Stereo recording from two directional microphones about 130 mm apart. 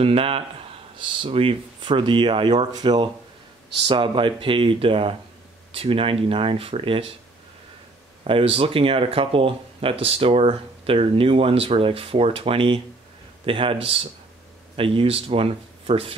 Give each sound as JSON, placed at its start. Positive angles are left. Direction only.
{"t": 0.0, "sound": "a man's voice", "side_deg": -45}
{"t": 8.2, "sound": "speech", "side_deg": -45}